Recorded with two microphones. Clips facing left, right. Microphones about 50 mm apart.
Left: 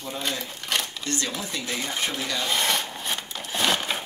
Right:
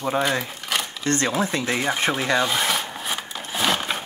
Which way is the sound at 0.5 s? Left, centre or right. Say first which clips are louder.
Right 2 dB; centre.